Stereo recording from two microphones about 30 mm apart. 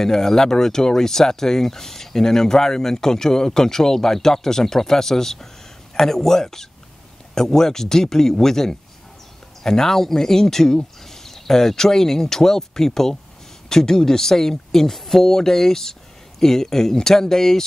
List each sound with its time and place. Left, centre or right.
0.0 s speech: centre